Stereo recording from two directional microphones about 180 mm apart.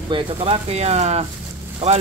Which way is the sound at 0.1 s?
30° right (ahead or behind).